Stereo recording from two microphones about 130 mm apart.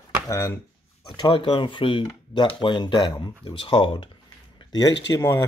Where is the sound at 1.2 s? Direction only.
40° left (ahead or behind).